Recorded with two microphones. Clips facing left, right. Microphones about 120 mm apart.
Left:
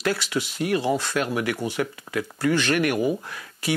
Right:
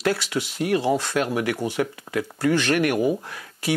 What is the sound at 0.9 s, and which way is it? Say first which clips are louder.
Speech: right 2 dB; 30° right (ahead or behind).